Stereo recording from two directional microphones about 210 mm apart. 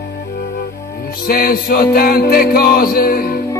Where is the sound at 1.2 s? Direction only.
45° left (ahead or behind).